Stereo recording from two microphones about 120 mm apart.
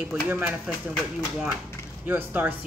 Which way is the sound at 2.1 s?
15° right (ahead or behind).